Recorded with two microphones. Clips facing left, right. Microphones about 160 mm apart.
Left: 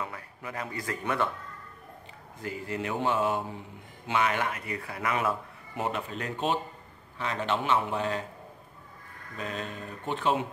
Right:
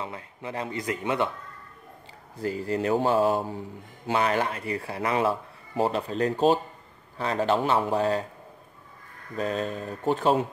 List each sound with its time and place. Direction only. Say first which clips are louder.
0.0 s speech: right 3 dB; 25° right (ahead or behind)
2.3 s speech: right 7 dB; 35° right (ahead or behind)
9.4 s speech: right 8 dB; 35° right (ahead or behind)